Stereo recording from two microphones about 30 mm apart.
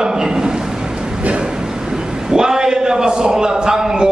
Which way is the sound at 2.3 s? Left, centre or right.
Centre.